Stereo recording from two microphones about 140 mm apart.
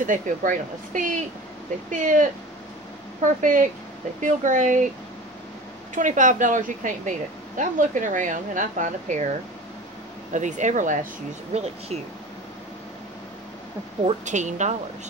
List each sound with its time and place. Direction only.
0.0 s speech: 70° right (ahead or behind)
3.3 s speech: 70° right (ahead or behind)
5.9 s speech: 65° right (ahead or behind)
10.3 s speech: 60° right (ahead or behind)
14.0 s speech: 60° right (ahead or behind)